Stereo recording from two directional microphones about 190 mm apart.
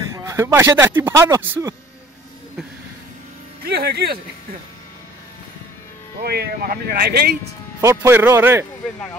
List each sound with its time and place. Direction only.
0.1 s speech: 15° right (ahead or behind)
3.6 s speech: 55° right (ahead or behind)
6.2 s speech: 55° right (ahead or behind)
7.8 s speech: 15° right (ahead or behind)